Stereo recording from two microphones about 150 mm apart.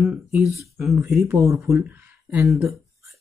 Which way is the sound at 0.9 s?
20° right (ahead or behind).